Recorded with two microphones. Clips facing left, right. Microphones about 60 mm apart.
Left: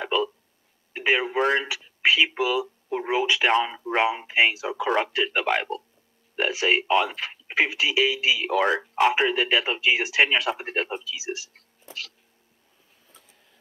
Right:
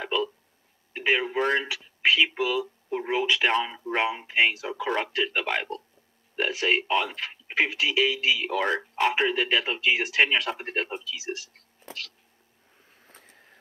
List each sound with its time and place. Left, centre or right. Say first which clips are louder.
0.0 s hiccup: left 3 dB; centre
0.9 s speech: left 2 dB; centre
13.0 s a sound: right 3 dB; right